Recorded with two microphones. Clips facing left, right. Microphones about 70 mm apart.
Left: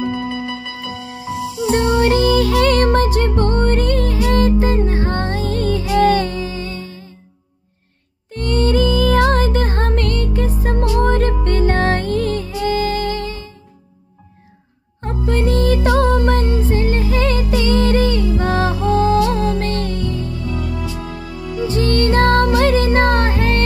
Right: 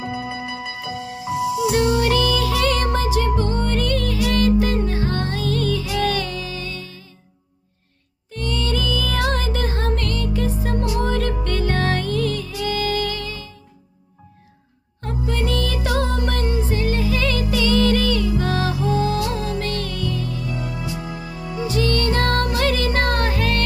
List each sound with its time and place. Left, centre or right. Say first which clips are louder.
0.0 s music: left 6 dB; centre
1.7 s music: left 6 dB; left
8.3 s music: left 7 dB; left
15.2 s music: left 7 dB; left
20.6 s music: left 3 dB; centre
21.6 s music: left 4 dB; left